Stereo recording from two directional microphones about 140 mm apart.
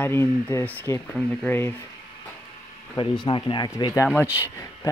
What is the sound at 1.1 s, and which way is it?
Speech, 5° left (ahead or behind).